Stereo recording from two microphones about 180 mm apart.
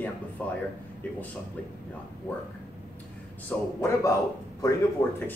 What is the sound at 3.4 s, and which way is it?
Speech, 15° left (ahead or behind).